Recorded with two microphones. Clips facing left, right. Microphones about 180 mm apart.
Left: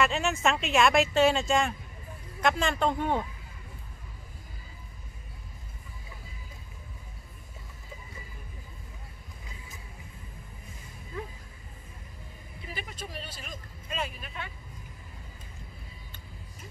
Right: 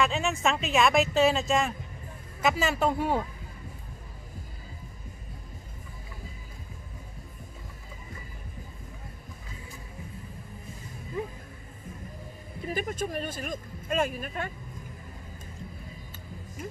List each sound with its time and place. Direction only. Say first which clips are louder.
0.0 s speech: even; centre (ahead or behind)
12.6 s speech: right 10 dB; 45° right (ahead or behind)